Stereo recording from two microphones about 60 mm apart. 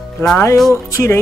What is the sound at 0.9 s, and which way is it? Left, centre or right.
Speech, left.